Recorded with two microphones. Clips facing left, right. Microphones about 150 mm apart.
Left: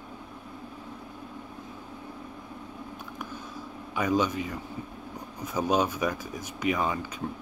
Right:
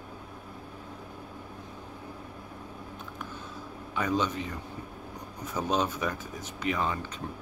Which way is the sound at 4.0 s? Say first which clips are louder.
Left 3 dB; 10° left (ahead or behind).